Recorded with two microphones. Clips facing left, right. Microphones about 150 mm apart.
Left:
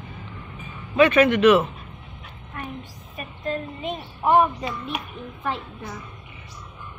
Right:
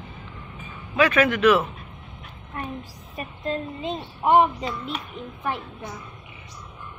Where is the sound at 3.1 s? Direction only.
30° right (ahead or behind).